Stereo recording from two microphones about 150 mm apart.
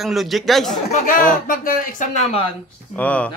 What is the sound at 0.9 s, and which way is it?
Speech, 70° left (ahead or behind).